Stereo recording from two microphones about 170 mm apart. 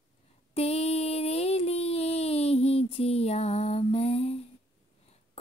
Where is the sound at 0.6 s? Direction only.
40° left (ahead or behind).